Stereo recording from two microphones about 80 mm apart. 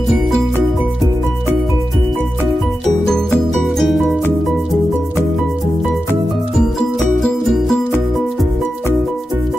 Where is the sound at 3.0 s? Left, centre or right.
Centre.